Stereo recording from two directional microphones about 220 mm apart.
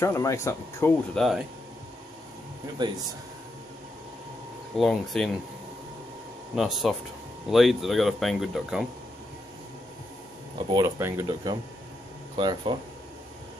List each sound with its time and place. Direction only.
0.0 s speech: 15° left (ahead or behind)
1.1 s speech: centre (ahead or behind)
2.8 s speech: 20° right (ahead or behind)
4.7 s speech: centre (ahead or behind)
6.5 s speech: centre (ahead or behind)
10.7 s speech: 15° right (ahead or behind)